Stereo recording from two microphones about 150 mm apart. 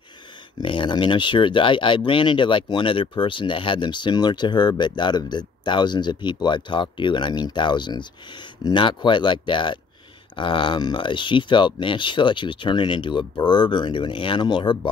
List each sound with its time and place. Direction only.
0.6 s speech: 35° left (ahead or behind)